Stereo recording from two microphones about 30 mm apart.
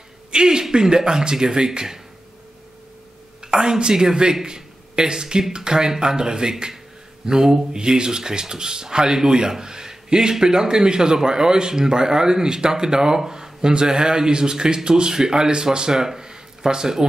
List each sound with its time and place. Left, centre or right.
0.3 s speech: right
3.4 s speech: right